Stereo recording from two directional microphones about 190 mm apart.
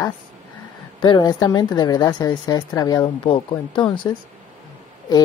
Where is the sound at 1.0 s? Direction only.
25° left (ahead or behind).